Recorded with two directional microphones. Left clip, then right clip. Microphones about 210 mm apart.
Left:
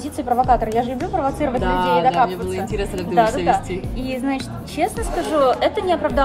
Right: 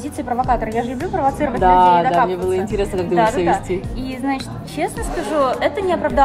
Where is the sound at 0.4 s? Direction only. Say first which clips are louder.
Left 2 dB; centre (ahead or behind).